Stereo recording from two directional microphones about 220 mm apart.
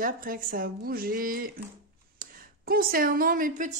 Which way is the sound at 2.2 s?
40° right (ahead or behind).